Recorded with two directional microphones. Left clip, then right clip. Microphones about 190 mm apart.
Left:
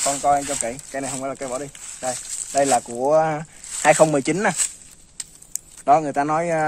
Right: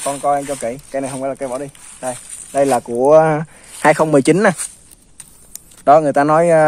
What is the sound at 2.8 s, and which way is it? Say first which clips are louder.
Speech: right 8 dB; 40° right (ahead or behind).